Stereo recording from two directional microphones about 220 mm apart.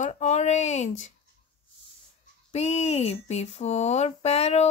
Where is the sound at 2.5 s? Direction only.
30° left (ahead or behind).